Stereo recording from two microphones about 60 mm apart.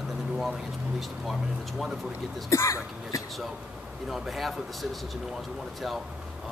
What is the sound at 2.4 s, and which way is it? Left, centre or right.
Speech, left.